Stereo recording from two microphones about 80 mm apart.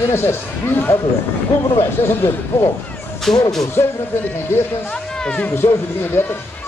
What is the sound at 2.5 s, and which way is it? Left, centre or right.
Speech, left.